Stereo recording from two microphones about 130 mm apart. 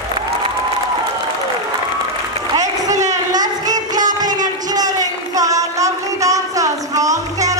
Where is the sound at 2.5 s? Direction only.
25° right (ahead or behind).